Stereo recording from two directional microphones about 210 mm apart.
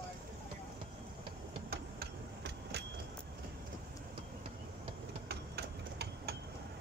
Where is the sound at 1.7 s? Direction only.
50° right (ahead or behind).